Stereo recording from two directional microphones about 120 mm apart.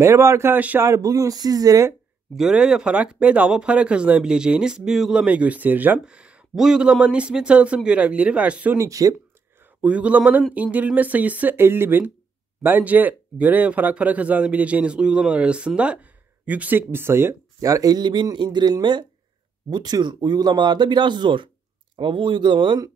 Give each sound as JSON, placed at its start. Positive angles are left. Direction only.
{"t": 0.0, "sound": "speech", "side_deg": -20}
{"t": 2.3, "sound": "speech", "side_deg": -5}
{"t": 8.7, "sound": "speech", "side_deg": -25}
{"t": 9.8, "sound": "speech", "side_deg": -10}